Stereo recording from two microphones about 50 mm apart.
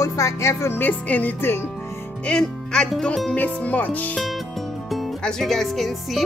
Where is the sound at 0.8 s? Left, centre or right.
Left.